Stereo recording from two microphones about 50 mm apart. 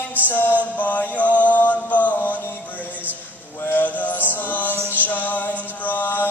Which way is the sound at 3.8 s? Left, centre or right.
Left.